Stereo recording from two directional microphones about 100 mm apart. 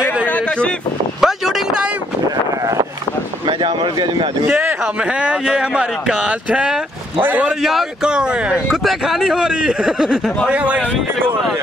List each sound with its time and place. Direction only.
1.2 s a sound: 5° right (ahead or behind)
3.4 s speech: 55° right (ahead or behind)
5.2 s speech: 10° right (ahead or behind)
7.6 s speech: 5° right (ahead or behind)